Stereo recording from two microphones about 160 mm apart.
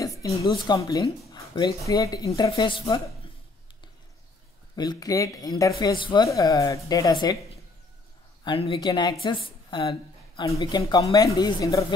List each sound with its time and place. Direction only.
0.0 s a woman's voice: 20° left (ahead or behind)
4.7 s speech: 25° left (ahead or behind)
8.5 s a woman's voice: 35° left (ahead or behind)